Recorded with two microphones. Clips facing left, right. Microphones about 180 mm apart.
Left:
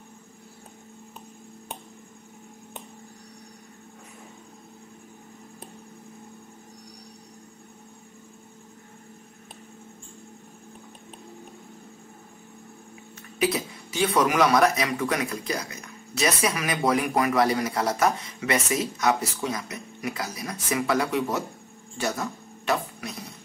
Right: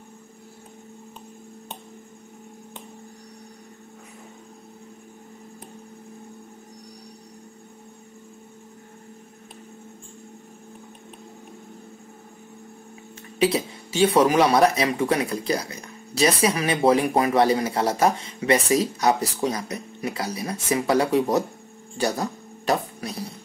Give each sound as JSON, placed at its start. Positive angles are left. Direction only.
{"t": 13.4, "sound": "speech", "side_deg": -30}
{"t": 21.9, "sound": "music", "side_deg": -35}